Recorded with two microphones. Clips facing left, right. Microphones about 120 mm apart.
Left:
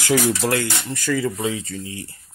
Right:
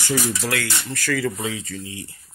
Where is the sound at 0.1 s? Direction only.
55° left (ahead or behind).